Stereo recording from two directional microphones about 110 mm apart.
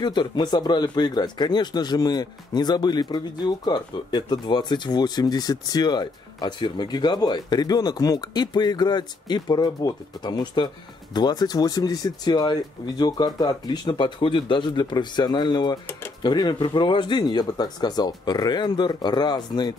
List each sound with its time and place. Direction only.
0.0 s speech: 40° left (ahead or behind)